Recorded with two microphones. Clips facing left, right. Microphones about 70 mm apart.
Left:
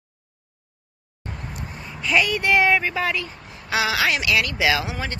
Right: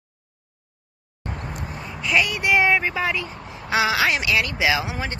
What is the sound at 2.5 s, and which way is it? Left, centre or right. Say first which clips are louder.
A woman's voice: even; right.